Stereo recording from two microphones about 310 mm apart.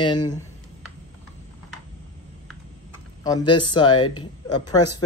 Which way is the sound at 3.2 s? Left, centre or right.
Centre.